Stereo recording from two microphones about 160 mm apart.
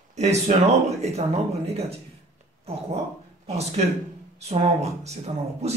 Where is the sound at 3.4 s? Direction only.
45° right (ahead or behind).